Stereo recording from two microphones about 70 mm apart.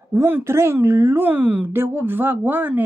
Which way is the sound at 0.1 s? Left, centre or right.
Right.